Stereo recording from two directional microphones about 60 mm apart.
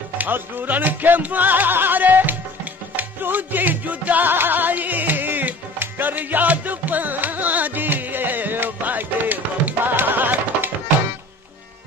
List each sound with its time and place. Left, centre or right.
0.2 s music: right